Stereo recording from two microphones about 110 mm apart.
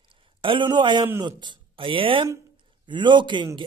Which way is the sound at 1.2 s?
45° right (ahead or behind).